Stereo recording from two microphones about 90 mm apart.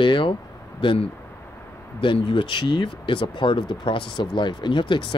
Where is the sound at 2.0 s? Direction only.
70° left (ahead or behind).